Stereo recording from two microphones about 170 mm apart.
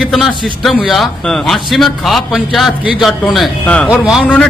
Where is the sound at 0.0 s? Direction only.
Centre (ahead or behind).